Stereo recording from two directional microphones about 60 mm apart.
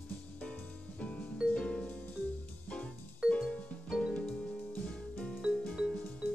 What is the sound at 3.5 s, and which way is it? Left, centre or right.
Music, centre.